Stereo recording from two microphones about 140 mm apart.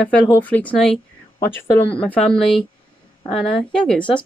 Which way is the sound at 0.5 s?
10° left (ahead or behind).